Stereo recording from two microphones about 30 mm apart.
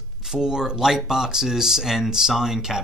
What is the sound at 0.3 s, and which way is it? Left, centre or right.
Speech, right.